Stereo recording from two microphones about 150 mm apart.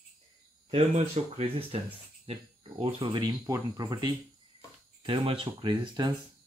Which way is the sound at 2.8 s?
35° right (ahead or behind).